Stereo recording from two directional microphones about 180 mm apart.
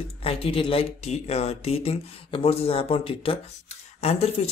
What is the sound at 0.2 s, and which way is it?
Speech, 30° left (ahead or behind).